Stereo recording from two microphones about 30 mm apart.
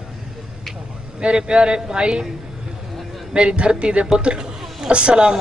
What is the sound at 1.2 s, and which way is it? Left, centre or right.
A man's voice, right.